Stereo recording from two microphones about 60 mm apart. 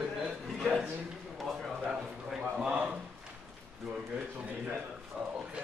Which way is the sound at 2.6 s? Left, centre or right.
Right.